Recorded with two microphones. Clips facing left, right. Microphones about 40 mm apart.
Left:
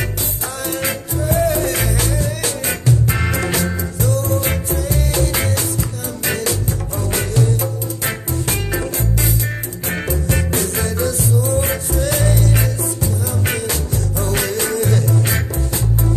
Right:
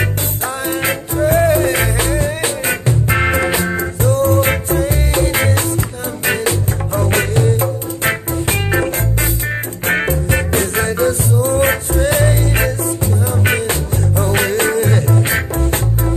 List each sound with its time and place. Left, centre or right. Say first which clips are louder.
0.7 s music: right 3 dB; right
4.0 s music: right 6 dB; right
6.9 s music: right 8 dB; right